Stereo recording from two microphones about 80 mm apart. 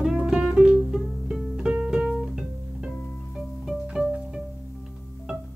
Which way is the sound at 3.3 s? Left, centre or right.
Centre.